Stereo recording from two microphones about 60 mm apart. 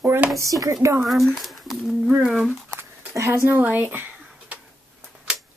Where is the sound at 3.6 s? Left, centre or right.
Right.